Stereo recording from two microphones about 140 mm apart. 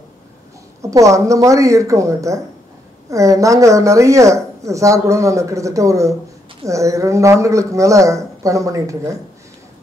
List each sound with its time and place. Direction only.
0.8 s a woman's voice: 20° right (ahead or behind)